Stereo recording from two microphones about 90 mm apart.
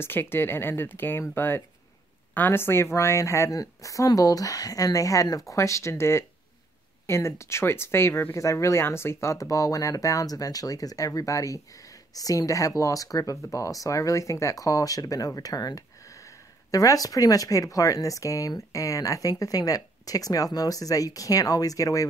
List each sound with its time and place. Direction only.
0.0 s speech: 25° left (ahead or behind)